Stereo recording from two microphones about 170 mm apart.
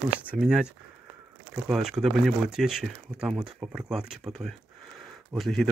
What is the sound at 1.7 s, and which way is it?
Speech, centre (ahead or behind).